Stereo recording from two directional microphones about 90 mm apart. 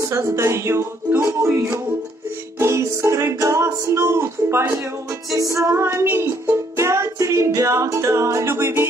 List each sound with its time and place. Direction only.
0.0 s music: 30° right (ahead or behind)